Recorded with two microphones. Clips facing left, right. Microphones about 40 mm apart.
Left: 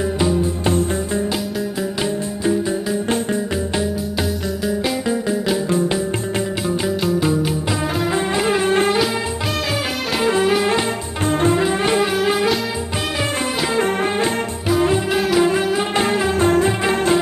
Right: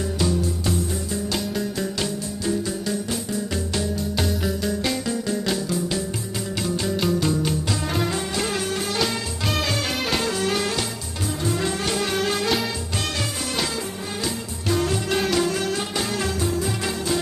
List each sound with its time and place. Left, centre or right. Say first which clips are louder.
0.2 s music: left 4 dB; left
0.7 s music: left 7 dB; left
4.6 s music: left 8 dB; centre
7.2 s music: left 4 dB; centre
10.2 s music: left 7 dB; left
14.7 s music: left 5 dB; left
15.4 s music: left 7 dB; left
16.4 s music: left 10 dB; left